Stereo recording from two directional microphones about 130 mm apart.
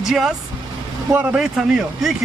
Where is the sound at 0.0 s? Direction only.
Centre (ahead or behind).